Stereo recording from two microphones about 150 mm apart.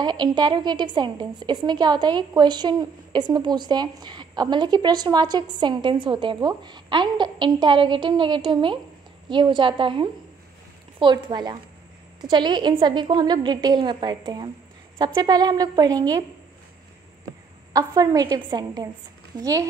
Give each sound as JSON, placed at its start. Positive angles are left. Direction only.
{"t": 0.0, "sound": "a woman's voice", "side_deg": -30}
{"t": 17.7, "sound": "a woman's voice", "side_deg": -25}